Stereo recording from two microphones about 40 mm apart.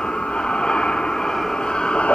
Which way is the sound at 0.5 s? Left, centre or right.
Left.